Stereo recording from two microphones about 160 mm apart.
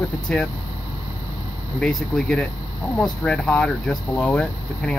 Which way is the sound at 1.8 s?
5° left (ahead or behind).